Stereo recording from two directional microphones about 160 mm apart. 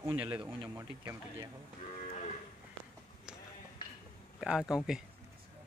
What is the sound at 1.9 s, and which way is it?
Moo, 45° left (ahead or behind).